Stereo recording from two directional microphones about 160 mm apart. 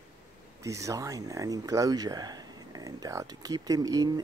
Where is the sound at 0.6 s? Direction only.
20° right (ahead or behind).